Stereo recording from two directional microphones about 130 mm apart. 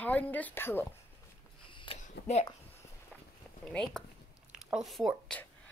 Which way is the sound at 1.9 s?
60° left (ahead or behind).